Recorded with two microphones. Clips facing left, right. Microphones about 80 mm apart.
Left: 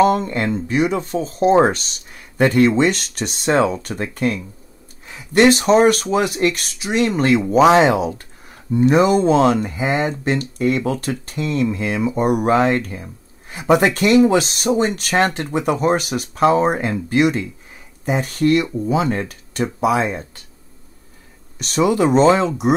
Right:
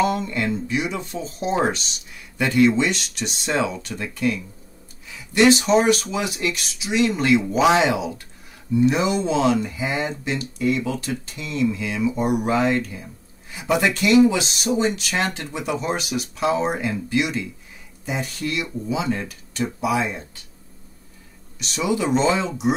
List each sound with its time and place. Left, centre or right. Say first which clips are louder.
0.0 s speech: left 6 dB; left
21.5 s speech: left 7 dB; left